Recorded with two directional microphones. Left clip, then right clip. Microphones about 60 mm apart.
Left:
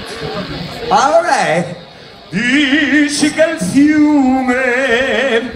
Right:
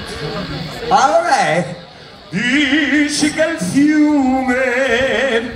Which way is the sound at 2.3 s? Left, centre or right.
Left.